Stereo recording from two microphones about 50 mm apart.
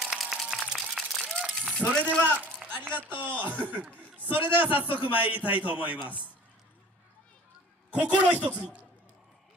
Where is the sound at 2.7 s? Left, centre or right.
Right.